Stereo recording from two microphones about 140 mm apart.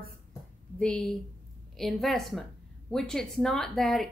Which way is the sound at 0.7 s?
5° left (ahead or behind).